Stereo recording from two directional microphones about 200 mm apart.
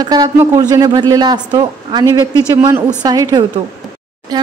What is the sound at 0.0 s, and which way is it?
Speech, 20° right (ahead or behind).